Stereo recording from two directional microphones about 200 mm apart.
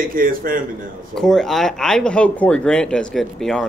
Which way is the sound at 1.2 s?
5° left (ahead or behind).